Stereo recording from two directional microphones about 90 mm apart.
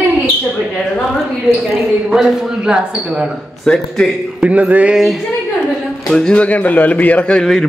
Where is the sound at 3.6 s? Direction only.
5° left (ahead or behind).